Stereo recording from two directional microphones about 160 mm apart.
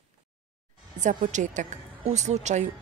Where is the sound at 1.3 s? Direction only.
50° right (ahead or behind).